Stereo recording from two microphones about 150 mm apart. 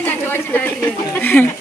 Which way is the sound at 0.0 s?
10° left (ahead or behind).